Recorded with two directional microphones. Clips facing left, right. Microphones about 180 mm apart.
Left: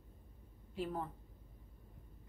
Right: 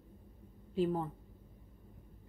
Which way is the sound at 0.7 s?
30° right (ahead or behind).